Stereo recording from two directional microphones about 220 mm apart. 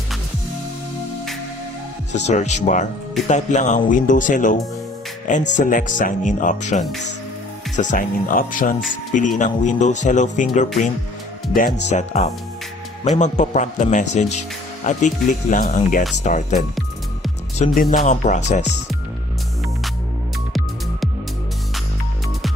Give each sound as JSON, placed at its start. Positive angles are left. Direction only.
{"t": 2.1, "sound": "speech", "side_deg": 30}
{"t": 17.7, "sound": "speech", "side_deg": 35}